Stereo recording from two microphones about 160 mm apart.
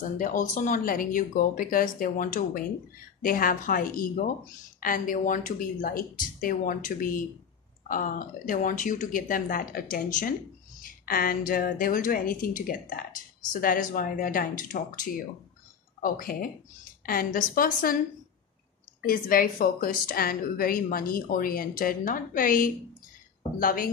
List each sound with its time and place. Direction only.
0.2 s a woman's voice: 55° left (ahead or behind)
19.0 s a woman's voice: 60° left (ahead or behind)